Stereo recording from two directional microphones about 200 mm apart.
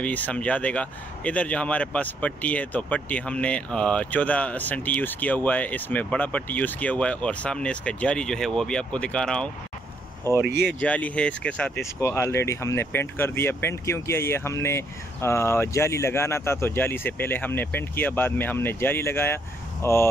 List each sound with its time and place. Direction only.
0.0 s speech: 5° left (ahead or behind)
10.3 s speech: 20° right (ahead or behind)
10.7 s speech: 5° left (ahead or behind)